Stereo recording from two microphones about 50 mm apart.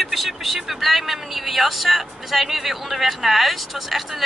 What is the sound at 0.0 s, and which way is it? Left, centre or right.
Speech, centre.